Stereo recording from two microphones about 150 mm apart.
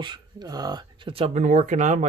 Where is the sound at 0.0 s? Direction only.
30° right (ahead or behind).